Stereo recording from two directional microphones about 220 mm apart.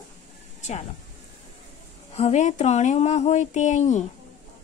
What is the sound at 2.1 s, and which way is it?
Speech, 30° left (ahead or behind).